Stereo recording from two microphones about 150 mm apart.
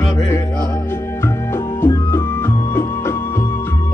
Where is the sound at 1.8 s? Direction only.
15° left (ahead or behind).